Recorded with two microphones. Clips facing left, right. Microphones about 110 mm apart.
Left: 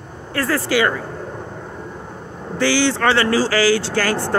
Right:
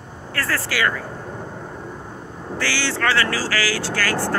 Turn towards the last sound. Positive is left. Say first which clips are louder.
# left 3 dB
turn(degrees=25)  # may be behind; listen again after turning